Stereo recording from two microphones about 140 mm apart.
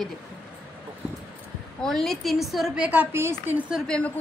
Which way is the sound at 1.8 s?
5° left (ahead or behind).